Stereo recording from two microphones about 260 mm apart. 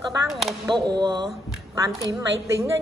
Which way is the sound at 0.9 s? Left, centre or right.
Centre.